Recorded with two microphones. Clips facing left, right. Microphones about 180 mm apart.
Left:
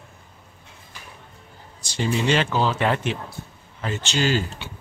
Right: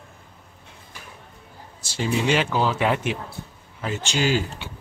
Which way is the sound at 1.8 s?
5° right (ahead or behind).